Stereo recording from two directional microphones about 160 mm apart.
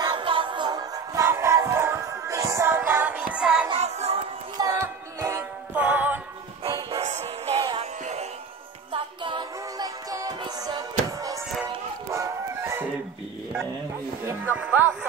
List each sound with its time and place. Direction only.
0.0 s music: 30° right (ahead or behind); by 3.6 s 5° right (ahead or behind)
3.7 s music: 40° right (ahead or behind)
4.6 s music: 20° right (ahead or behind)
6.9 s music: 45° right (ahead or behind); by 11.3 s 25° right (ahead or behind)
11.6 s dog: 15° right (ahead or behind)
14.2 s music: 10° right (ahead or behind)